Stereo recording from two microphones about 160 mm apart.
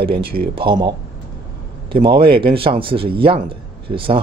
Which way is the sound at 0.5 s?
30° right (ahead or behind).